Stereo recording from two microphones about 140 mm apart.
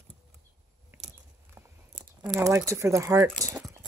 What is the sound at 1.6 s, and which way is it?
Crunch, 20° right (ahead or behind).